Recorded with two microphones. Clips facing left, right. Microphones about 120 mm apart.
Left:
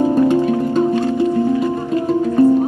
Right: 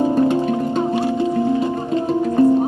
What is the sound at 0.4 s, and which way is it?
Music, 20° right (ahead or behind).